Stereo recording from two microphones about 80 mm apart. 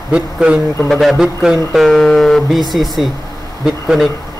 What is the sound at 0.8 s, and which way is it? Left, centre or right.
A man's voice, centre.